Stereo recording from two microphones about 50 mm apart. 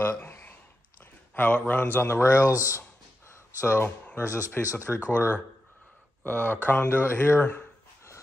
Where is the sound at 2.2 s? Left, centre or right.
Left.